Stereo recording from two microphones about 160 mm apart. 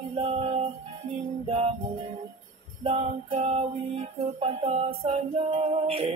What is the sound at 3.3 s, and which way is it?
Music, 35° right (ahead or behind).